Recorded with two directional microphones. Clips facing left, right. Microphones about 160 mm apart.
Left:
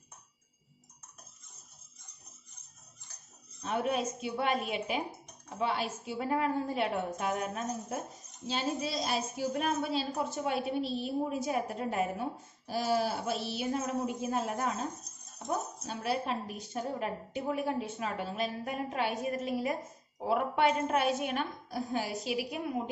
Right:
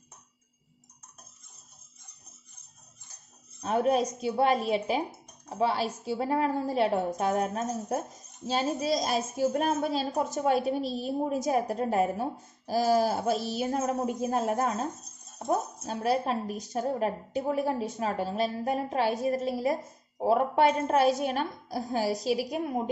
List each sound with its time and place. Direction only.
3.6 s a woman's voice: 40° right (ahead or behind)
15.9 s a woman's voice: 40° right (ahead or behind)